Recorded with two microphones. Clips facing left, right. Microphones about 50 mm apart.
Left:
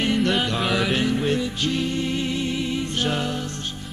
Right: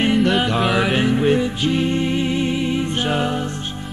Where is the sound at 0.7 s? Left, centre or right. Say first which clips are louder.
Right 4 dB; right.